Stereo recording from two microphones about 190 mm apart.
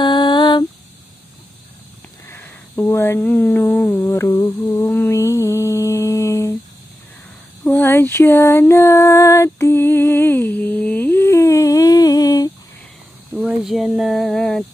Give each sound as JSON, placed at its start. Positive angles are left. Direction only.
{"t": 0.0, "sound": "a sound", "side_deg": 25}
{"t": 2.2, "sound": "speech", "side_deg": 10}
{"t": 4.0, "sound": "mantra", "side_deg": 15}
{"t": 7.6, "sound": "music", "side_deg": 10}
{"t": 13.3, "sound": "speech", "side_deg": 0}